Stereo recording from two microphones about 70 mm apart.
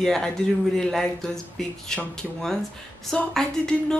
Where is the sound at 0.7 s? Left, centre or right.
Centre.